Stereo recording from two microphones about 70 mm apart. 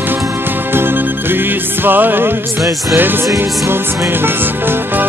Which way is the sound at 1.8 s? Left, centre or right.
Right.